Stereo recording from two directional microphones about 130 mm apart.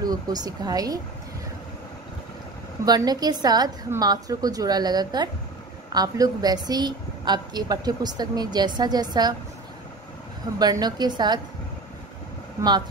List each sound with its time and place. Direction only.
0.0 s a woman's voice: 30° right (ahead or behind)
2.8 s a woman's voice: 30° right (ahead or behind)
10.6 s a woman's voice: 30° right (ahead or behind)